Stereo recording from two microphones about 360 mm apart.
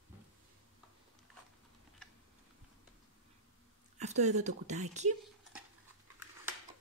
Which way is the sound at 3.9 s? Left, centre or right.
Centre.